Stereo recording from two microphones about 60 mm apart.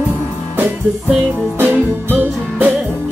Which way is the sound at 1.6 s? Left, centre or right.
Right.